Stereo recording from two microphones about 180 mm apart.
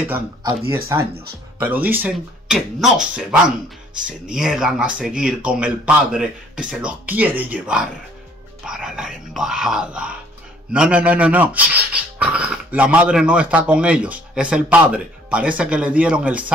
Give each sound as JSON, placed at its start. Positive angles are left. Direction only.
{"t": 0.4, "sound": "speech", "side_deg": -25}
{"t": 1.6, "sound": "speech", "side_deg": -10}
{"t": 3.9, "sound": "speech", "side_deg": -45}
{"t": 4.4, "sound": "speech", "side_deg": -5}